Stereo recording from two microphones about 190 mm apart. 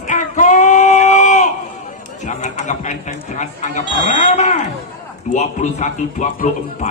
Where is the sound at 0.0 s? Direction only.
40° left (ahead or behind).